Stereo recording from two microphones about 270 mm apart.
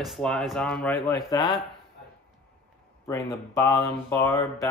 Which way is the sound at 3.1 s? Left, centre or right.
Centre.